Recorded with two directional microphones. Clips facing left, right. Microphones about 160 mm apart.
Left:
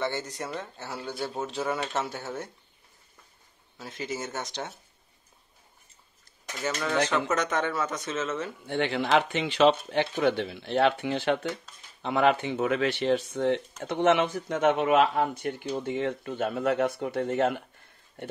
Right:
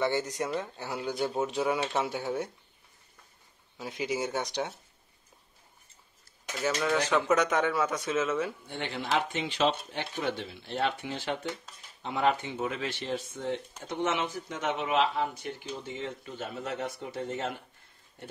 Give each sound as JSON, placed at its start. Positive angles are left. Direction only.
{"t": 0.0, "sound": "speech", "side_deg": -15}
{"t": 3.7, "sound": "speech", "side_deg": -15}
{"t": 6.7, "sound": "speech", "side_deg": 0}
{"t": 8.6, "sound": "speech", "side_deg": 75}